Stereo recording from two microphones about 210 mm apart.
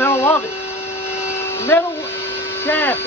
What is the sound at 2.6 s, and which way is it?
Speech, 10° left (ahead or behind).